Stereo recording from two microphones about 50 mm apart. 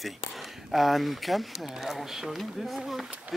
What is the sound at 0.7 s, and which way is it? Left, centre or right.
Speech, centre.